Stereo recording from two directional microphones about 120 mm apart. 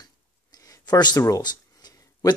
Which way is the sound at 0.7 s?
35° left (ahead or behind).